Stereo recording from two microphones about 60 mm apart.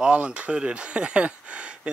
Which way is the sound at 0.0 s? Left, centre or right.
Right.